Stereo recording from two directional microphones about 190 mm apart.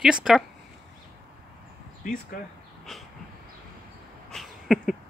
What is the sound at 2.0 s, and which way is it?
Speech, 50° left (ahead or behind).